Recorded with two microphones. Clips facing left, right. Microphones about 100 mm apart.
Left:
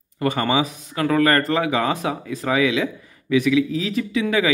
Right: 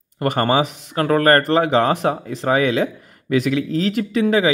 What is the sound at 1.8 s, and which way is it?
Speech, 65° right (ahead or behind).